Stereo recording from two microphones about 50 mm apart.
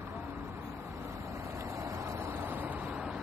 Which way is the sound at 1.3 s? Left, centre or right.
Right.